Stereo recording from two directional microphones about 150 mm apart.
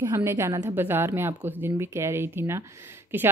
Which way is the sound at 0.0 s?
20° right (ahead or behind).